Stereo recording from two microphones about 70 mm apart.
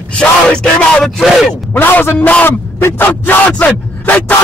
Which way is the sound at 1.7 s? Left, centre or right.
Left.